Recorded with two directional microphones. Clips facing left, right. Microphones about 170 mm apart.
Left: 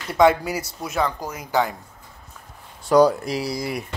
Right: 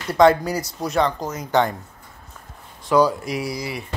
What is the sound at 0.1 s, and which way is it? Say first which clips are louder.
Speech: right 2 dB; 5° left (ahead or behind).